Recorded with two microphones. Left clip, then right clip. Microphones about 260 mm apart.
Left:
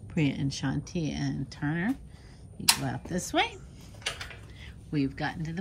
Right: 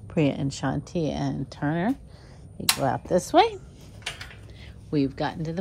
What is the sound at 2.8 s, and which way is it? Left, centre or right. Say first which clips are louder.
Speech: right 12 dB; left.